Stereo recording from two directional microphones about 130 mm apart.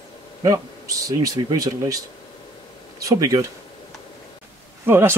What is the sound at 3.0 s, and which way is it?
Speech, 25° right (ahead or behind).